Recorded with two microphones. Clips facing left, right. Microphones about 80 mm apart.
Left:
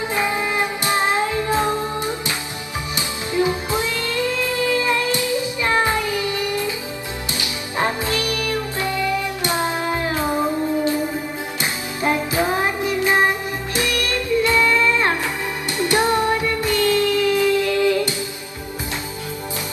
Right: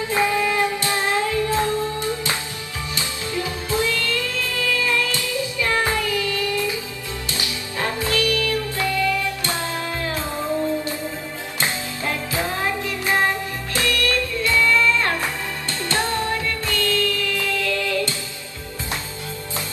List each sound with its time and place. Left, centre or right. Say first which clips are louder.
0.1 s music: right 3 dB; left
11.6 s music: left 3 dB; left